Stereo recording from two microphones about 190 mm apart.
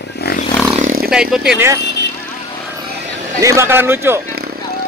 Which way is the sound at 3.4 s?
15° right (ahead or behind).